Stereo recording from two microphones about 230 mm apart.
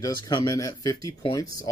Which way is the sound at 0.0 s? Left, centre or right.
Centre.